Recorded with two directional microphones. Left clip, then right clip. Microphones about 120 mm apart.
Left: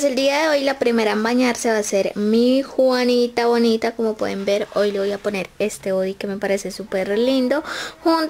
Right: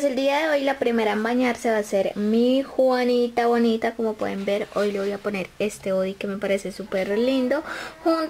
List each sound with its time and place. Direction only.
0.0 s speech: 20° left (ahead or behind)